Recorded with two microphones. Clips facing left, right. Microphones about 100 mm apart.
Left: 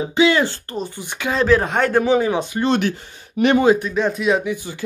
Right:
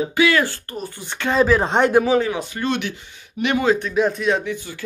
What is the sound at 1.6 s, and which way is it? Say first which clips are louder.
Speech: right 2 dB; 25° right (ahead or behind).